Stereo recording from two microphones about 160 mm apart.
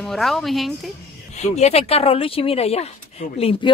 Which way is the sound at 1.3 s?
45° left (ahead or behind).